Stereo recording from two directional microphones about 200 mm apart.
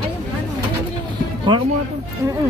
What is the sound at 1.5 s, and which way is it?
Speech, 25° right (ahead or behind).